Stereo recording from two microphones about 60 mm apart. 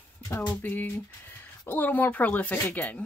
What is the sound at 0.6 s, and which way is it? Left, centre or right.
Speech, left.